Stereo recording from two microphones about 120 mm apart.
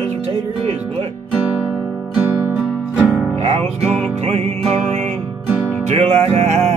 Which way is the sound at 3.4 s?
60° right (ahead or behind).